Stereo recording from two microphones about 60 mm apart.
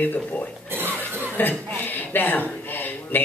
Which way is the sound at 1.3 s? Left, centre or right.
Left.